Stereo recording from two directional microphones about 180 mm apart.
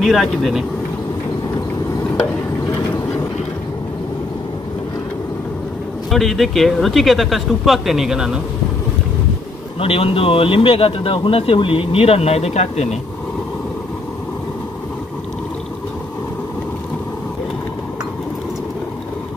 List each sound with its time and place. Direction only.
0.0 s speech: centre (ahead or behind)
6.0 s speech: centre (ahead or behind)
9.8 s speech: 30° left (ahead or behind)